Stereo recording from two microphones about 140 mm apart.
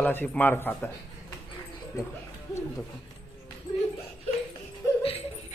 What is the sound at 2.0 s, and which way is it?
Speech, 20° left (ahead or behind).